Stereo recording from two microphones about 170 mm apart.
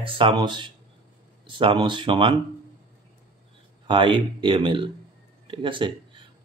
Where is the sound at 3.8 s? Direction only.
30° right (ahead or behind).